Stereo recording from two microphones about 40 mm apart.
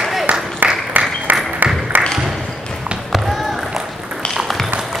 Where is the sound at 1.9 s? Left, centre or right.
Right.